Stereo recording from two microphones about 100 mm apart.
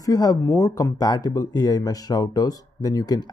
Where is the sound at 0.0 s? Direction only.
35° left (ahead or behind).